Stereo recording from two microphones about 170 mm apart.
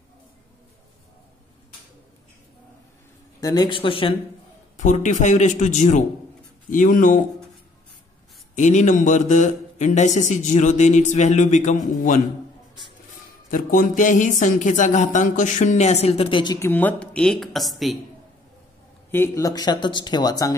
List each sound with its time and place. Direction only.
3.3 s speech: 20° left (ahead or behind)
4.7 s a man's voice: 45° left (ahead or behind)
8.5 s a man's voice: 45° left (ahead or behind)
13.5 s a man's voice: 50° left (ahead or behind); by 16.5 s 30° left (ahead or behind)
16.5 s a woman's voice: 15° left (ahead or behind)
19.1 s speech: 15° left (ahead or behind)